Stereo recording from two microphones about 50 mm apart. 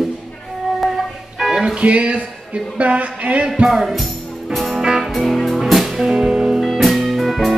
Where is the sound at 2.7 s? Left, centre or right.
Right.